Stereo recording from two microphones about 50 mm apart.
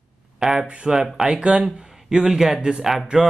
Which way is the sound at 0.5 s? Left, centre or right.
Right.